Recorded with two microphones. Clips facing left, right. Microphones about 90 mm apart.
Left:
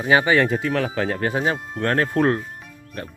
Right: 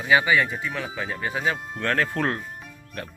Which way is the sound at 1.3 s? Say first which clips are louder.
Left 4 dB; 35° left (ahead or behind).